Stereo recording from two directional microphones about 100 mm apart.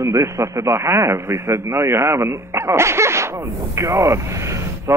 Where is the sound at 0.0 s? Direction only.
30° right (ahead or behind).